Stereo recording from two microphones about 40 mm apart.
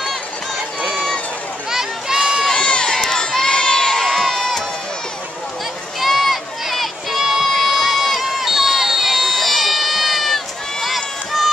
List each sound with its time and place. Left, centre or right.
0.9 s run: centre
1.7 s a sound: centre
2.5 s crowd: left; by 4.5 s centre
5.9 s music: centre